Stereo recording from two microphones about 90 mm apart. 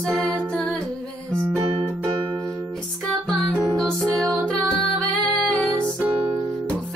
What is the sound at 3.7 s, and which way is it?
Music, 5° left (ahead or behind).